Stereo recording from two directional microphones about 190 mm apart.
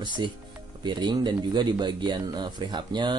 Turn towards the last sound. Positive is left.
turn(degrees=-25)  # may be behind; listen again after turning